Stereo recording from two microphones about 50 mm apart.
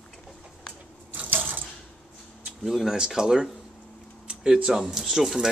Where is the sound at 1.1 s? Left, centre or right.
Right.